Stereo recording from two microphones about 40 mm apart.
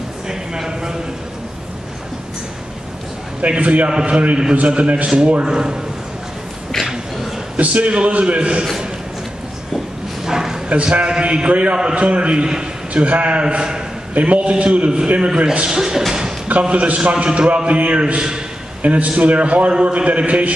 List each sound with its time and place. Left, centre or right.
0.3 s a sound: centre
3.3 s a man's voice: right; by 5.8 s centre
7.5 s a man's voice: right
10.2 s bow-wow: centre
10.7 s a man's voice: right
12.9 s a man's voice: right
14.1 s a man's voice: right; by 16.0 s centre
16.1 s a sound: centre
16.7 s a man's voice: right